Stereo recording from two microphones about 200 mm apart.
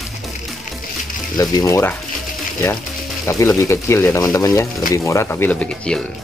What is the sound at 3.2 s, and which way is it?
Speech, 15° left (ahead or behind).